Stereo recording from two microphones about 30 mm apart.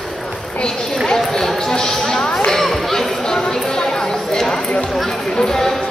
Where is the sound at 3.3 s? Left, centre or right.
Left.